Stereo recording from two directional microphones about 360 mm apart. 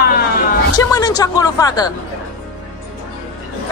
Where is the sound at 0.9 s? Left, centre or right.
Centre.